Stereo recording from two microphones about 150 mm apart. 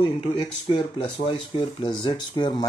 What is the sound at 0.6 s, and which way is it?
Speech, 35° left (ahead or behind).